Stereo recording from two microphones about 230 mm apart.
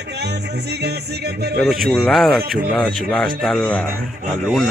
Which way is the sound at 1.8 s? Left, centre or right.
Centre.